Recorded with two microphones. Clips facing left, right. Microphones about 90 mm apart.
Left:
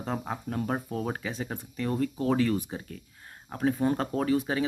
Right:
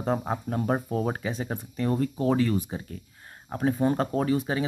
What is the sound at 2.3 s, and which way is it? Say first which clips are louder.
Speech: right 1 dB; 5° right (ahead or behind).